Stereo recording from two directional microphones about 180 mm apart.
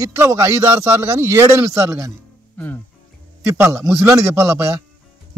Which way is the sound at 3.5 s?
15° right (ahead or behind).